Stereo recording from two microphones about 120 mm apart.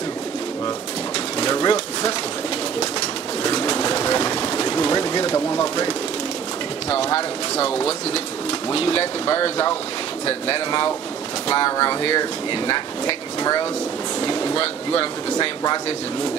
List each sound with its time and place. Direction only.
1.4 s pigeon: 40° left (ahead or behind)
3.4 s pigeon: 35° left (ahead or behind)
5.3 s pigeon: 25° left (ahead or behind)
8.7 s speech: 50° left (ahead or behind)